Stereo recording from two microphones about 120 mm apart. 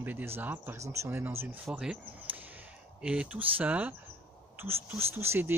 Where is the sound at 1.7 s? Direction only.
10° right (ahead or behind).